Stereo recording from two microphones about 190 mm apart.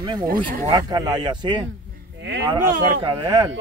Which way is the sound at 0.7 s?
20° right (ahead or behind).